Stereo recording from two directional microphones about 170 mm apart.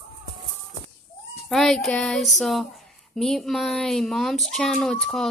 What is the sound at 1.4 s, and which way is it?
Speech, centre (ahead or behind).